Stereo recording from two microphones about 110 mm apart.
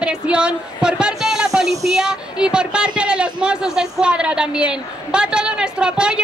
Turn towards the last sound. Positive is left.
turn(degrees=-10)  # may be behind; listen again after turning